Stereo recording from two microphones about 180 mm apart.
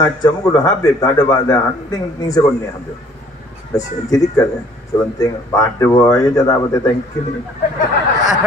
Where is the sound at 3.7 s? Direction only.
20° left (ahead or behind).